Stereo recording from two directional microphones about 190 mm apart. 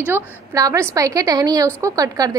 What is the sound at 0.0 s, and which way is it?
A woman's voice, 15° right (ahead or behind).